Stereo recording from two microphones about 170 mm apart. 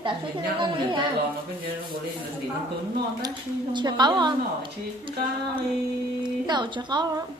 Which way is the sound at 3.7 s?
25° right (ahead or behind).